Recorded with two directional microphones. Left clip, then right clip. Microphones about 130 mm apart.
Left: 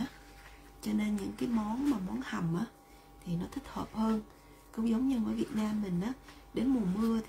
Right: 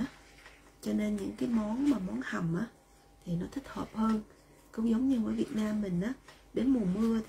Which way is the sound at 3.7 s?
20° left (ahead or behind).